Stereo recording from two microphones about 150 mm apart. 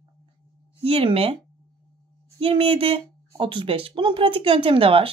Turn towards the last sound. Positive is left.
turn(degrees=-35)  # may be behind; listen again after turning